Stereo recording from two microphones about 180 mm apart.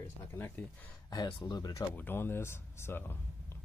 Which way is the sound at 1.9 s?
10° left (ahead or behind).